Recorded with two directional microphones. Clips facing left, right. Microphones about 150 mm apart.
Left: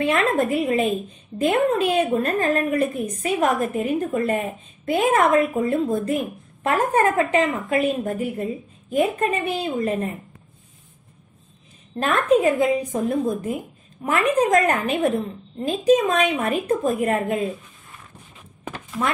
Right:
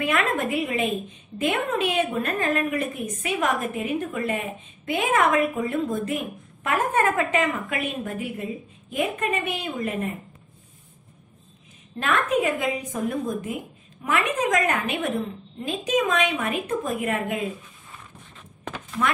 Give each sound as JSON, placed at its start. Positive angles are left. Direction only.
{"t": 0.0, "sound": "a woman's voice", "side_deg": 30}
{"t": 12.0, "sound": "a woman's voice", "side_deg": 35}
{"t": 18.6, "sound": "a sound", "side_deg": 5}